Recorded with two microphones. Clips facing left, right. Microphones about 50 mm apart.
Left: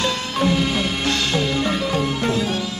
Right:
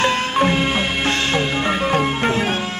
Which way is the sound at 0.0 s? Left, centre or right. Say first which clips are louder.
Right 4 dB; right.